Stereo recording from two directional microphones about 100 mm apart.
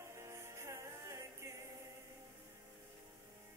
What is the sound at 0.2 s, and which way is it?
Music, 25° right (ahead or behind).